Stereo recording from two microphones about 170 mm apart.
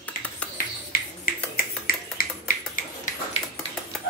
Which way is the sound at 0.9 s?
60° left (ahead or behind).